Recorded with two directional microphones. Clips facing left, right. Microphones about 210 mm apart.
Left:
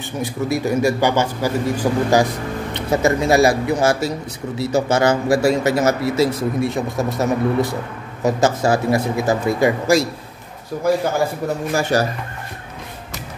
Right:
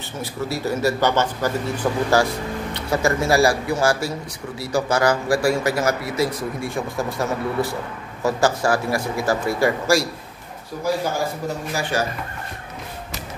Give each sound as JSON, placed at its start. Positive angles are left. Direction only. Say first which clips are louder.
{"t": 0.2, "sound": "a man's voice", "louder": "left 5 dB", "side_deg": 15}
{"t": 11.7, "sound": "speech", "louder": "left 6 dB", "side_deg": 40}